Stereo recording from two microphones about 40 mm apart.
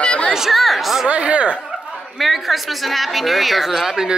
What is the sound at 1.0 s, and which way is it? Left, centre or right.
Speech, right.